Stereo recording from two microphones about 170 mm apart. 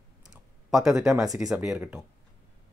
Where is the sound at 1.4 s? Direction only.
Centre (ahead or behind).